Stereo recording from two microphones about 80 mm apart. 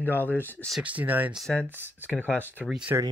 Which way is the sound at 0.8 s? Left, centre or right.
Right.